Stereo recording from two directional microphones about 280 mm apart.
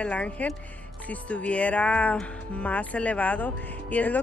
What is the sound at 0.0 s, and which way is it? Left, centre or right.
Speech, centre.